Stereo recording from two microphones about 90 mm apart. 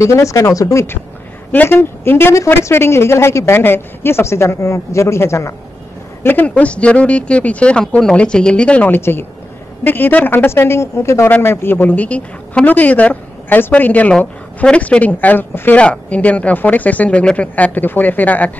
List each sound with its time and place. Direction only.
0.0 s speech: 35° left (ahead or behind)
1.5 s a woman's voice: 25° left (ahead or behind)
6.2 s a woman's voice: 20° left (ahead or behind)